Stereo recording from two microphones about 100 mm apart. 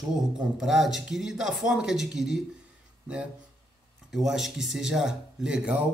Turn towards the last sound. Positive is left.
turn(degrees=-10)  # may be behind; listen again after turning